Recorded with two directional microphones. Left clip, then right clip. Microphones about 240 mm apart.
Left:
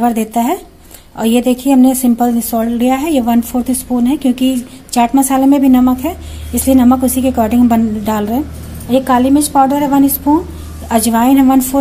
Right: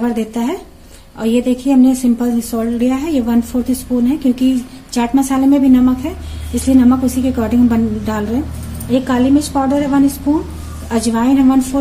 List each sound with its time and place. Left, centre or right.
0.0 s a woman's voice: left